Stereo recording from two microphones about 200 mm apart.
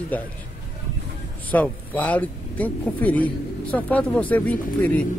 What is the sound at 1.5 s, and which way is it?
Speech, 10° left (ahead or behind).